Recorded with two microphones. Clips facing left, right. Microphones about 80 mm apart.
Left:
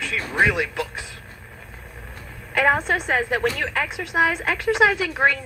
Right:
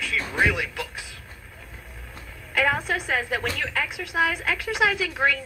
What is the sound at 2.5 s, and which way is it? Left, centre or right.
A woman's voice, left.